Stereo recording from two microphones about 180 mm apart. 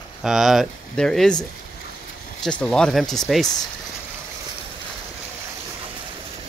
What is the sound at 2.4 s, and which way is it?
Speech, 5° left (ahead or behind).